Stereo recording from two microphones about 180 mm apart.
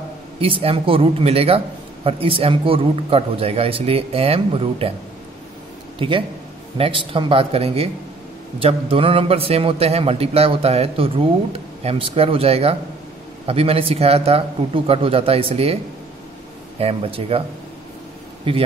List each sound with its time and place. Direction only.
0.4 s a man's voice: 30° right (ahead or behind)
5.9 s a man's voice: 30° right (ahead or behind)
16.8 s a man's voice: 30° right (ahead or behind)
18.5 s a man's voice: 30° right (ahead or behind)